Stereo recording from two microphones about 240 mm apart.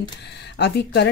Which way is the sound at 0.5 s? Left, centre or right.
Left.